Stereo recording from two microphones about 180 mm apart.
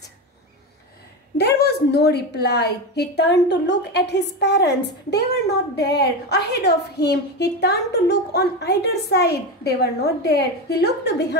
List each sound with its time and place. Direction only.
1.6 s a woman's voice: 65° left (ahead or behind)